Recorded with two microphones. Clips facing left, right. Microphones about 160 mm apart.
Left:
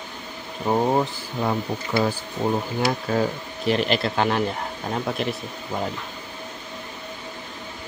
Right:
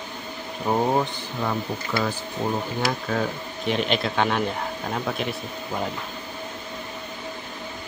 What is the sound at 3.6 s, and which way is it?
Speech, centre (ahead or behind).